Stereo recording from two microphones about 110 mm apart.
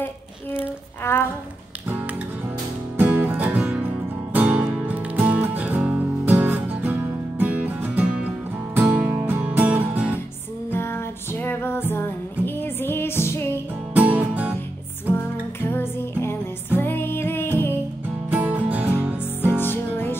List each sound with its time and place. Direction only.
1.1 s speech: 20° left (ahead or behind)
1.9 s music: 15° right (ahead or behind)
10.7 s music: 20° left (ahead or behind)
13.9 s music: 15° right (ahead or behind)
15.7 s music: 20° left (ahead or behind)
18.3 s music: 15° right (ahead or behind)
19.6 s music: 20° left (ahead or behind)